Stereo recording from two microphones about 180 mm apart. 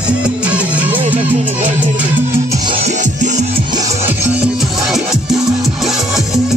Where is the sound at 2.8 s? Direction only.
40° right (ahead or behind).